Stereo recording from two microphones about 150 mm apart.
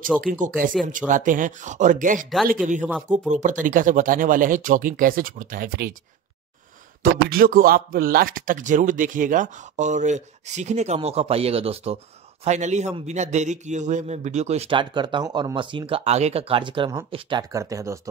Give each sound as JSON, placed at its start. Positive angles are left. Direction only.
{"t": 0.2, "sound": "speech", "side_deg": -65}
{"t": 7.0, "sound": "a man's voice", "side_deg": -75}